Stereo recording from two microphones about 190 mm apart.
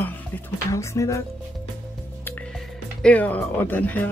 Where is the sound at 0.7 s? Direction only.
15° left (ahead or behind).